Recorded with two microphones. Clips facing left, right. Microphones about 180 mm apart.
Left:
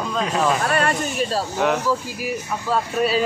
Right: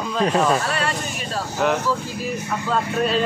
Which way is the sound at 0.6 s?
50° left (ahead or behind).